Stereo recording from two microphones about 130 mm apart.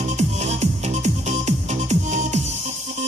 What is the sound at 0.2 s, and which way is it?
Music, 60° right (ahead or behind).